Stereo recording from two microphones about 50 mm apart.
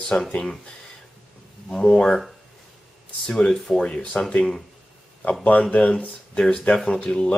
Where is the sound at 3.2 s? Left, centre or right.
Centre.